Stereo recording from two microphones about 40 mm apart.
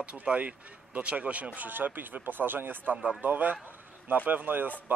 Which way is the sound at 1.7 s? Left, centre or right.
Right.